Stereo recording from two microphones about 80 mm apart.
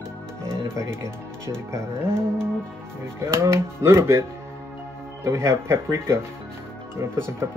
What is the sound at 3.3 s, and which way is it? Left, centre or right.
Speech, right.